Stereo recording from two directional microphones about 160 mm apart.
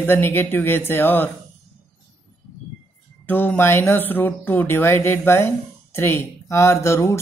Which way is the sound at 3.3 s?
10° left (ahead or behind).